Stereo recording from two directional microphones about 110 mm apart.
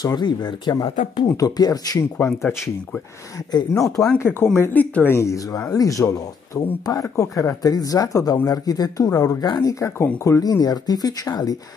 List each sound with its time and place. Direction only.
0.0 s speech: 40° left (ahead or behind)
3.3 s speech: 30° left (ahead or behind)
3.8 s speech: 5° left (ahead or behind)
4.2 s speech: 20° left (ahead or behind)